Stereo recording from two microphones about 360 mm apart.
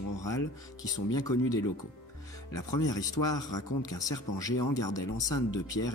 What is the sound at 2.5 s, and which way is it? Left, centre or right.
Speech, left.